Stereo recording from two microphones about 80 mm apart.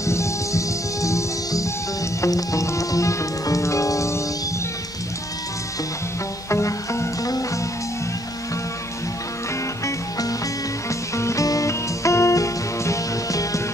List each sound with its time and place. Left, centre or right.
0.0 s music: left
6.5 s music: left
9.8 s music: left